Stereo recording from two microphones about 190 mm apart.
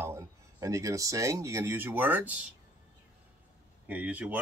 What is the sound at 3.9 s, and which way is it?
Speech, 10° right (ahead or behind).